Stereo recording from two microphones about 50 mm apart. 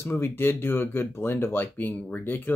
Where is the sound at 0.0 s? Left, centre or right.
Left.